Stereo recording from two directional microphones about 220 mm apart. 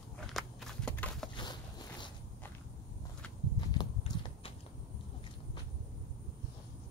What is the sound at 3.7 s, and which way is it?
Horse, 20° left (ahead or behind).